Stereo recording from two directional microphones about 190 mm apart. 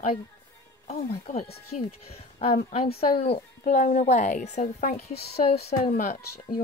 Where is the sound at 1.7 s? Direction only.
40° left (ahead or behind).